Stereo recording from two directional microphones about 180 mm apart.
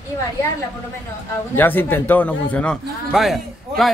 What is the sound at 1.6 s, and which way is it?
A man's voice, 10° left (ahead or behind).